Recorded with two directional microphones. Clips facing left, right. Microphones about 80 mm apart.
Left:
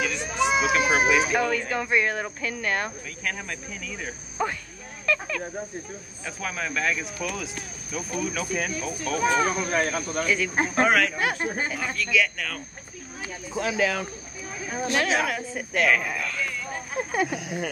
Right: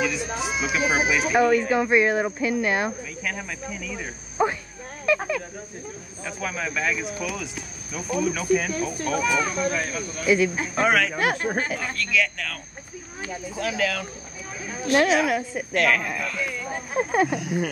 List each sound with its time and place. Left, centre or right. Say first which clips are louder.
0.0 s run: even; centre
0.6 s speech: right 1 dB; centre
4.4 s speech: right 5 dB; centre
5.0 s snake: right 4 dB; centre
6.2 s speech: right 2 dB; centre
9.2 s speech: left 3 dB; left
10.2 s speech: right 8 dB; centre
10.7 s speech: left 3 dB; centre
13.2 s speech: even; left
14.9 s speech: right 6 dB; right
15.2 s speech: right 5 dB; centre
15.7 s speech: right 1 dB; centre